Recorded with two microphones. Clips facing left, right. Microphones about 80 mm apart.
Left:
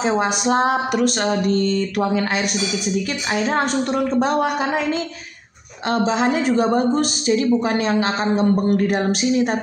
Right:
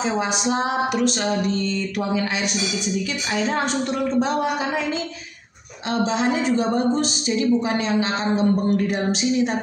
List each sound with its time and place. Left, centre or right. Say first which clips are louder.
0.2 s speech: left 4 dB; left
5.9 s speech: left 3 dB; left